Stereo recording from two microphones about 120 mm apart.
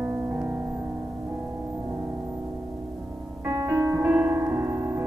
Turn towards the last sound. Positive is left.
turn(degrees=-25)  # may be behind; listen again after turning